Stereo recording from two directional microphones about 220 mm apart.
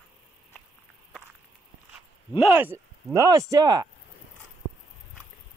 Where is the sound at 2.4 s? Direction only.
5° right (ahead or behind).